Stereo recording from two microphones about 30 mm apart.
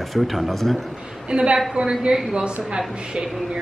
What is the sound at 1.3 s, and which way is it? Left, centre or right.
Speech, right.